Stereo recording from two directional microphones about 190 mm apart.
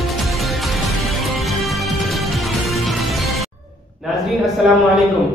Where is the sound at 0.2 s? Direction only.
Centre (ahead or behind).